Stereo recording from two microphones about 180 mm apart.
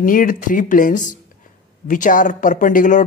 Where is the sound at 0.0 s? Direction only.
50° left (ahead or behind).